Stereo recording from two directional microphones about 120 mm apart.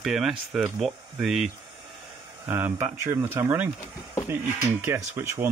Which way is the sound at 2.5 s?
15° right (ahead or behind).